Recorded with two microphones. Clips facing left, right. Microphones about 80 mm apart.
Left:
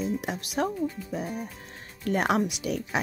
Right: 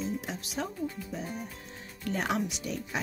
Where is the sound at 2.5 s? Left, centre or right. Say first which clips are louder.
Left 6 dB; left.